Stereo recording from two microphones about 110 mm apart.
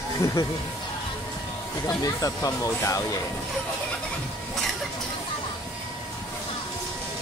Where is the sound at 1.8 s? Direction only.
35° left (ahead or behind).